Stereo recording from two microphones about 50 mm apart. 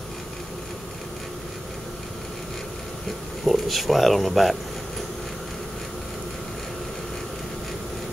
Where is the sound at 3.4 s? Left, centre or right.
Centre.